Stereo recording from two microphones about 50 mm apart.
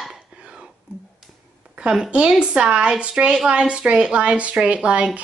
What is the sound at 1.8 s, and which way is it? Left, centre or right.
A woman's voice, centre.